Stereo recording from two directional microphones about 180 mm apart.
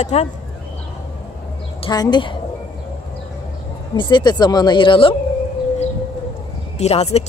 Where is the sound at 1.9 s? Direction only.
25° left (ahead or behind).